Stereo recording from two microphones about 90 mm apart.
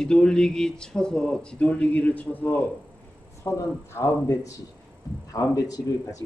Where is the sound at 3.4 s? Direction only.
30° left (ahead or behind).